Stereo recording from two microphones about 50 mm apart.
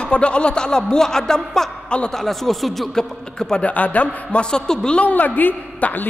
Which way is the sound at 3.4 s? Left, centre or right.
Centre.